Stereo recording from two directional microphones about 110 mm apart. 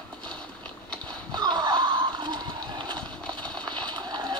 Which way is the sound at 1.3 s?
40° right (ahead or behind).